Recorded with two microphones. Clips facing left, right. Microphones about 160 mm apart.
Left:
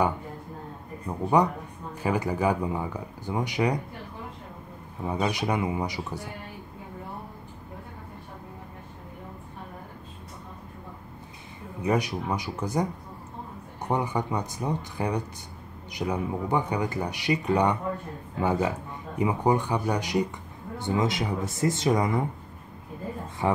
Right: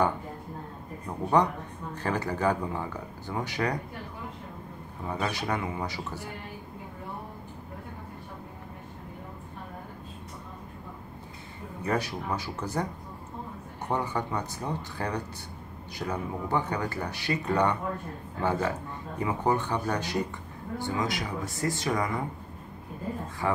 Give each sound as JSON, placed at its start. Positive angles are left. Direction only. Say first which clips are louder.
{"t": 1.4, "sound": "speech", "louder": "left 1 dB", "side_deg": 10}
{"t": 5.0, "sound": "speech", "louder": "left 4 dB", "side_deg": 15}
{"t": 11.8, "sound": "speech", "louder": "left 4 dB", "side_deg": 15}
{"t": 13.8, "sound": "speech", "louder": "left 3 dB", "side_deg": 15}
{"t": 23.4, "sound": "speech", "louder": "left 3 dB", "side_deg": 20}